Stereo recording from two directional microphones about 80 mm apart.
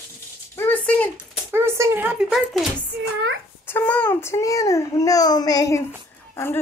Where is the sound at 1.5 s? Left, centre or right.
Right.